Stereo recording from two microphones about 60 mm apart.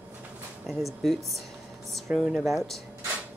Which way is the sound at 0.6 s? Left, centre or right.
Centre.